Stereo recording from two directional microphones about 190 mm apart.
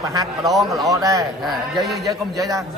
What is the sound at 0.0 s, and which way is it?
A man's voice, 20° right (ahead or behind).